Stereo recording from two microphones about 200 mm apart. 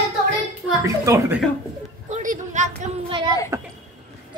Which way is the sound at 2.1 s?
40° right (ahead or behind).